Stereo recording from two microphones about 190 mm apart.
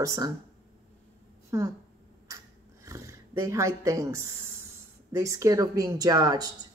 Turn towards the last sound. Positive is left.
turn(degrees=-20)  # may be behind; listen again after turning